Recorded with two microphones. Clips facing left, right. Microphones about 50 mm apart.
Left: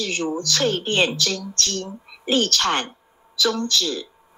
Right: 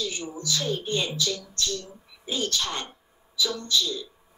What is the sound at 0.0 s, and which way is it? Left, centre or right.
Speech, left.